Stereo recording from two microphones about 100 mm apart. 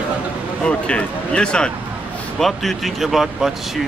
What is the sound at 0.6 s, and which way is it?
Speech, 10° left (ahead or behind).